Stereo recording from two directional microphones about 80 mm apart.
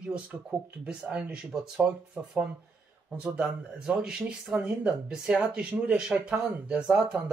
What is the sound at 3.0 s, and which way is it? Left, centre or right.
Speech, centre.